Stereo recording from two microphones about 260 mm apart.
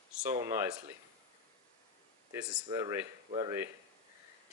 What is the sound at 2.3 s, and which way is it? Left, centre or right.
Speech, centre.